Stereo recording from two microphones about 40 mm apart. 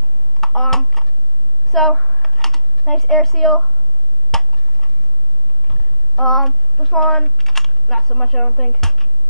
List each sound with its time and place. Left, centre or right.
0.4 s typing: centre
4.3 s tick-tock: centre
5.7 s a sound: centre